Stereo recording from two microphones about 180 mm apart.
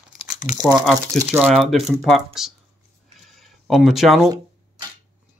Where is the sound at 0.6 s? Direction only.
25° right (ahead or behind).